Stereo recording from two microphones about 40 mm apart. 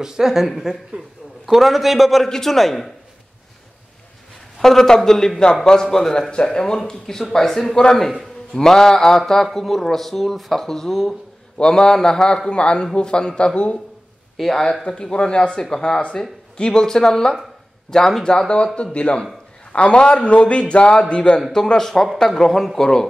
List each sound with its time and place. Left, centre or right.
0.0 s a man's voice: centre
2.2 s speech: centre
4.6 s speech: centre
11.5 s a man's voice: centre
14.3 s a sound: centre
14.9 s a man's voice: left
18.9 s a man's voice: left
21.5 s speech: centre